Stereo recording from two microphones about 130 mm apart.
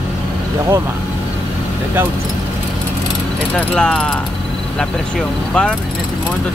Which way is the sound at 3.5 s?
5° left (ahead or behind).